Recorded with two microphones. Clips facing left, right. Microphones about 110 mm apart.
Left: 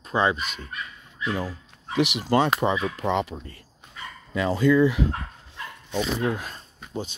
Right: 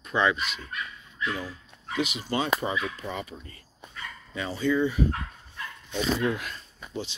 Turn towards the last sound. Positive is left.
turn(degrees=45)  # may be behind; listen again after turning